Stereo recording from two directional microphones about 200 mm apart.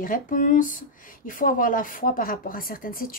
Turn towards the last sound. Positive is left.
turn(degrees=45)  # may be behind; listen again after turning